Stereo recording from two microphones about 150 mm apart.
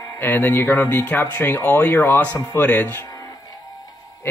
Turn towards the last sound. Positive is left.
turn(degrees=25)  # may be behind; listen again after turning